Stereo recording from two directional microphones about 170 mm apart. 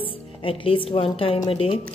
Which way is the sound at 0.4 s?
30° left (ahead or behind).